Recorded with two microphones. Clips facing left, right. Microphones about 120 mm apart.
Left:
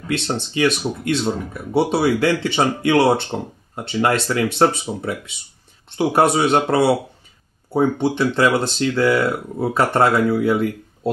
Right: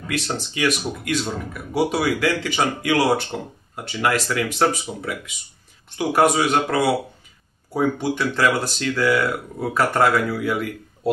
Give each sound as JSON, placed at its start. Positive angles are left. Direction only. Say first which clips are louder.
{"t": 0.1, "sound": "speech", "louder": "left 4 dB", "side_deg": 25}